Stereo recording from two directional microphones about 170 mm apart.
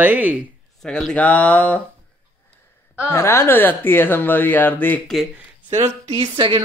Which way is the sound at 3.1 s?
15° left (ahead or behind).